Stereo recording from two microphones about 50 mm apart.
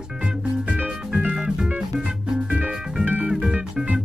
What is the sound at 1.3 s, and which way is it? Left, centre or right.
Music, centre.